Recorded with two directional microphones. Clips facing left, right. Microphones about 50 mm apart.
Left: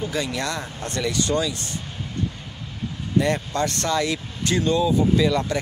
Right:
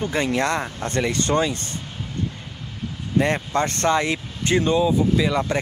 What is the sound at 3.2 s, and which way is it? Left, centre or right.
Speech, right.